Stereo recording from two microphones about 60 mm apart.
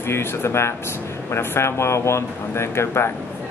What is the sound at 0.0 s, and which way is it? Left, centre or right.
Speech, left.